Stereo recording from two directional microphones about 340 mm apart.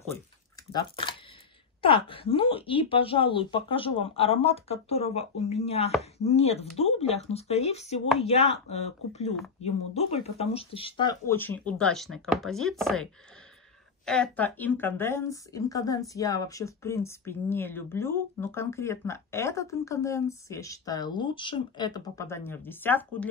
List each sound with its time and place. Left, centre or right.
0.7 s speech: centre